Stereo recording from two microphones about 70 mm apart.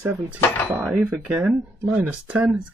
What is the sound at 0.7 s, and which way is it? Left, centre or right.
Speech, right.